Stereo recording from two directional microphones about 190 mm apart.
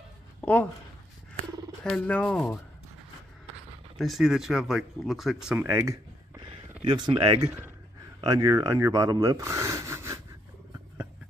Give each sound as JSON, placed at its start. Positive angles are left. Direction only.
{"t": 0.4, "sound": "a sound", "side_deg": 5}
{"t": 1.9, "sound": "speech", "side_deg": 5}
{"t": 4.0, "sound": "speech", "side_deg": 0}